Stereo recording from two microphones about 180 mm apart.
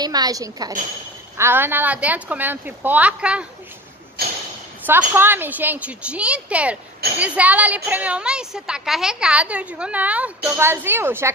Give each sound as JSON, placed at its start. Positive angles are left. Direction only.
{"t": 0.0, "sound": "a woman's voice", "side_deg": -20}
{"t": 4.2, "sound": "a sound", "side_deg": -60}
{"t": 4.8, "sound": "a woman's voice", "side_deg": -10}